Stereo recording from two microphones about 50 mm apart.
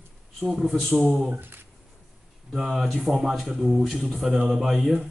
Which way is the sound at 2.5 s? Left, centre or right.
Centre.